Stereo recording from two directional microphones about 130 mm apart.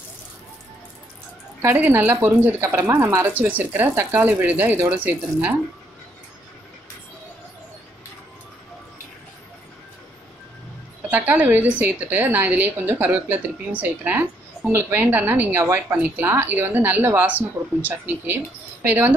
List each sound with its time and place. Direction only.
1.6 s a woman's voice: 20° right (ahead or behind)
11.0 s a woman's voice: 15° right (ahead or behind)